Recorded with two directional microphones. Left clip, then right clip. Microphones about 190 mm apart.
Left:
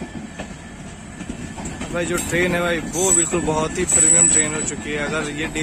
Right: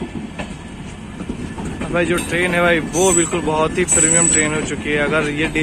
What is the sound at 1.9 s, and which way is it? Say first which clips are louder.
Speech: right 4 dB; centre (ahead or behind).